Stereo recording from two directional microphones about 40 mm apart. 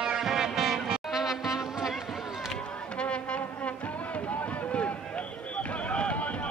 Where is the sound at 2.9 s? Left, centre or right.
Left.